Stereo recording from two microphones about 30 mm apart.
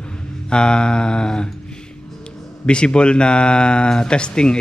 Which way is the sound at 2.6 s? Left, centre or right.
Left.